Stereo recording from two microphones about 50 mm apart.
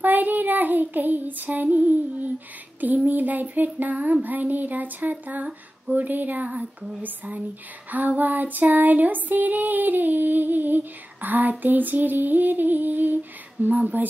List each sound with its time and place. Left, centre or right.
0.0 s child singing: right
3.1 s female singing: right
6.6 s female singing: centre
7.0 s female singing: right